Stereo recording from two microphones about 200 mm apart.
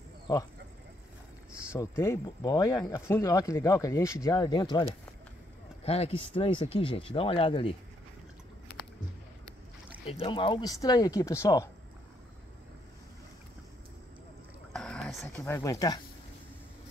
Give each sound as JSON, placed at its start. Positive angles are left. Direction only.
{"t": 0.3, "sound": "speech", "side_deg": 20}
{"t": 1.7, "sound": "speech", "side_deg": 15}
{"t": 5.9, "sound": "speech", "side_deg": 30}
{"t": 10.0, "sound": "speech", "side_deg": 30}
{"t": 14.7, "sound": "a sound", "side_deg": 5}